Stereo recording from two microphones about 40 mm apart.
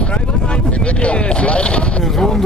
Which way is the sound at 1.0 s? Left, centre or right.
Left.